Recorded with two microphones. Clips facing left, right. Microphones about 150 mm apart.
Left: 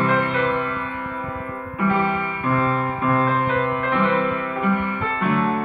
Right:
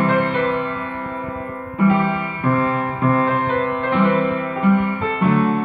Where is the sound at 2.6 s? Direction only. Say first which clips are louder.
Right 2 dB; 20° right (ahead or behind).